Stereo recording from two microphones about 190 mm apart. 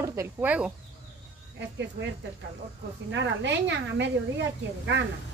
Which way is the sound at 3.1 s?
70° right (ahead or behind).